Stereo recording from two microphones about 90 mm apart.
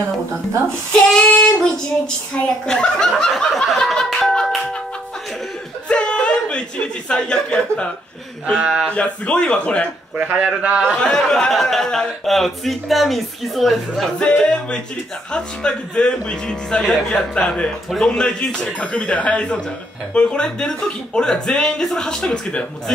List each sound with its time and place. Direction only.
0.9 s speech: 10° left (ahead or behind)
5.9 s chuckle: 10° left (ahead or behind)
7.1 s speech: 10° left (ahead or behind)
8.5 s a man's voice: 10° right (ahead or behind)
8.8 s speech: 15° left (ahead or behind)
10.1 s a man's voice: 20° right (ahead or behind)
10.8 s speech: 10° left (ahead or behind)